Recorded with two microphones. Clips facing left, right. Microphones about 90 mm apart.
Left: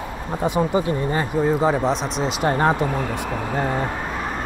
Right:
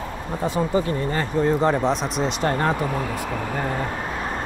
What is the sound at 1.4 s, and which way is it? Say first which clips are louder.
Speech: even; 5° left (ahead or behind).